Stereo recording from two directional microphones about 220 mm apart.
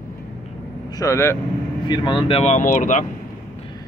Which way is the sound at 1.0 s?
10° left (ahead or behind).